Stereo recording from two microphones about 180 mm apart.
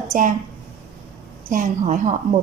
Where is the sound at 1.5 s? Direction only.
45° right (ahead or behind).